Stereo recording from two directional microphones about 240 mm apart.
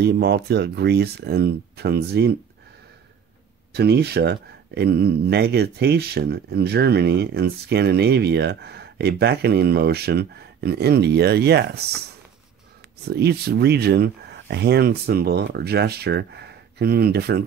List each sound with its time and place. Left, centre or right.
0.0 s speech: right
3.7 s speech: right
13.0 s speech: right